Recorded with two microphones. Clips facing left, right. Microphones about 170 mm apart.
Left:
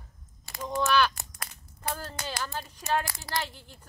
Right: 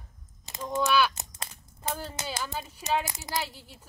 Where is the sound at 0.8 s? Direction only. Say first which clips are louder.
Even; 5° right (ahead or behind).